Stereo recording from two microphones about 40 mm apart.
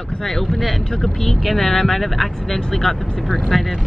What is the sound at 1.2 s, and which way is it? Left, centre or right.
Speech, centre.